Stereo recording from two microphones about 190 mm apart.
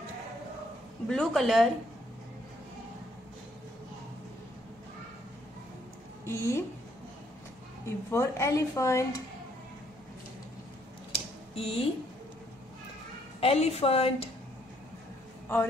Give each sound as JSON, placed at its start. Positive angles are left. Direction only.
{"t": 1.0, "sound": "speech", "side_deg": 5}
{"t": 6.2, "sound": "a woman's voice", "side_deg": 15}
{"t": 7.8, "sound": "a woman's voice", "side_deg": 15}
{"t": 11.1, "sound": "a sound", "side_deg": 30}
{"t": 13.4, "sound": "a woman's voice", "side_deg": 30}